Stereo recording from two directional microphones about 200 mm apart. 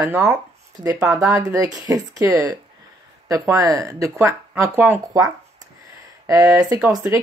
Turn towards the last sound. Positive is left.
turn(degrees=-15)  # may be behind; listen again after turning